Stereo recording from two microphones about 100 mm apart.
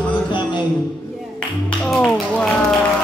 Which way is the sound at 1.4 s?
10° left (ahead or behind).